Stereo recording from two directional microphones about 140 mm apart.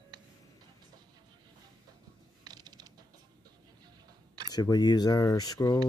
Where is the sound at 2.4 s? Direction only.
30° right (ahead or behind).